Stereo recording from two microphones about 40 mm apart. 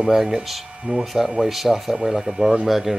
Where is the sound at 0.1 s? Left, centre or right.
Centre.